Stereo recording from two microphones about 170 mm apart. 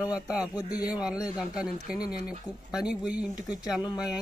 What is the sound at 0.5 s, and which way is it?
Speech, 20° left (ahead or behind).